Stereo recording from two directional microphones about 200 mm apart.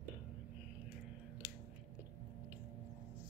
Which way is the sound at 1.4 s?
20° left (ahead or behind).